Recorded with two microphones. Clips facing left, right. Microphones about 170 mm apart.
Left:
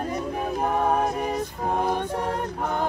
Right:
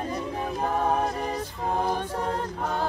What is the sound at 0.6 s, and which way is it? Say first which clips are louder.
A capella: left 2 dB; 10° left (ahead or behind).